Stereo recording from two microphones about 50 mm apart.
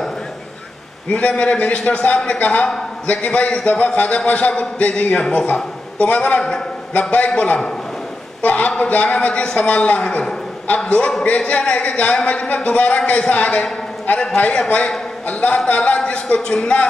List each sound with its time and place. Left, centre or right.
1.1 s a man's voice: left